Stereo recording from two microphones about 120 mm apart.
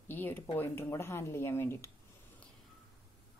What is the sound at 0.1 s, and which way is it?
A woman's voice, 15° left (ahead or behind).